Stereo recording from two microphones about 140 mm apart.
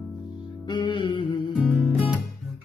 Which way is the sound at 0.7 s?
35° left (ahead or behind).